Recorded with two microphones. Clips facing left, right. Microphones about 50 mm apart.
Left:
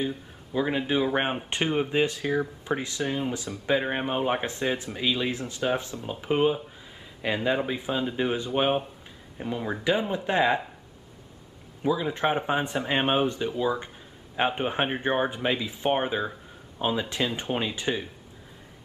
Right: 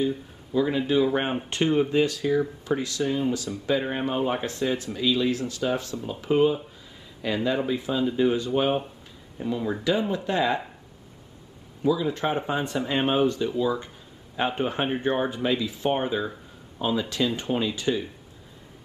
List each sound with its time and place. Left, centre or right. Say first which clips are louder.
0.5 s speech: right 3 dB; left
11.8 s speech: right 1 dB; left